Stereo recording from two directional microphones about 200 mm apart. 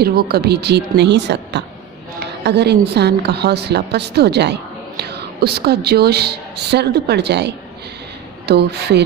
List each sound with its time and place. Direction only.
0.0 s a woman's voice: 50° right (ahead or behind)